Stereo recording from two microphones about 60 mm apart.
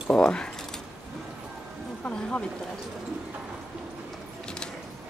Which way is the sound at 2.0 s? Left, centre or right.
Left.